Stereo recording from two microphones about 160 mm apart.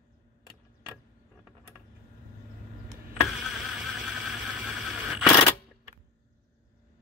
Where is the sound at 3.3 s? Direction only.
Centre (ahead or behind).